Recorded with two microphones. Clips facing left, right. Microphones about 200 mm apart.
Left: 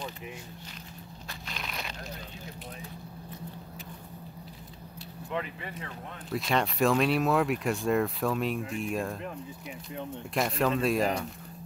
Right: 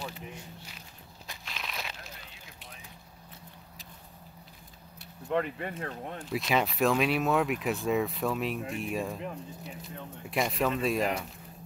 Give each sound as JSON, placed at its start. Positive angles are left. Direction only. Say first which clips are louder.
{"t": 1.4, "sound": "crumpling", "louder": "left 1 dB", "side_deg": 0}
{"t": 5.3, "sound": "speech", "louder": "right 5 dB", "side_deg": -50}
{"t": 6.3, "sound": "speech", "louder": "even", "side_deg": 0}
{"t": 10.3, "sound": "speech", "louder": "left 1 dB", "side_deg": 0}